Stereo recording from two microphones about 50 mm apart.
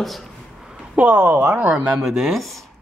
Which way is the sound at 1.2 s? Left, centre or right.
Right.